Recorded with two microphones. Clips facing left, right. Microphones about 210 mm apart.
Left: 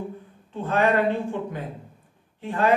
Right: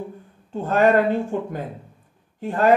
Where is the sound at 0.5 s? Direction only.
45° right (ahead or behind).